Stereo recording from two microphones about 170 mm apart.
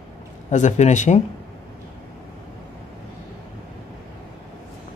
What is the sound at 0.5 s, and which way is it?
Speech, 45° left (ahead or behind).